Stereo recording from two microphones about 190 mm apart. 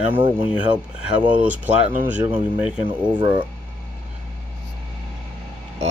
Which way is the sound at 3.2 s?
25° right (ahead or behind).